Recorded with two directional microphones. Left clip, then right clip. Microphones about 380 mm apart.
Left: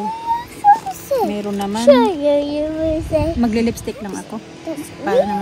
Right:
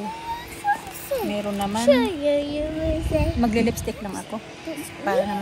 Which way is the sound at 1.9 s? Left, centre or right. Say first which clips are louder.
Left 8 dB; centre.